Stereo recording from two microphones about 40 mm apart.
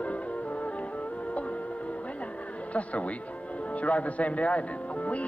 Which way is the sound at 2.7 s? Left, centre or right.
Left.